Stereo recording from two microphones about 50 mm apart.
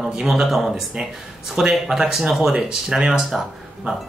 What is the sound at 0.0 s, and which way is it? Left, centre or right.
Speech, centre.